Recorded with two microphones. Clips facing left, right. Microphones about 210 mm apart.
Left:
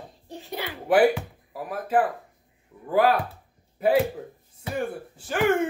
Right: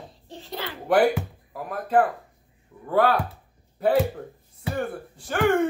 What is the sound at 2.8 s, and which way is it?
Speech, 5° left (ahead or behind).